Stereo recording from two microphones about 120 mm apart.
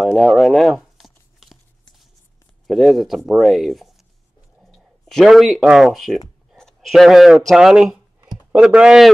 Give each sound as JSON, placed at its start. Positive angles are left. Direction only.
{"t": 0.2, "sound": "tearing", "side_deg": 0}
{"t": 2.6, "sound": "speech", "side_deg": 0}
{"t": 8.2, "sound": "a sound", "side_deg": -20}
{"t": 8.5, "sound": "speech", "side_deg": -5}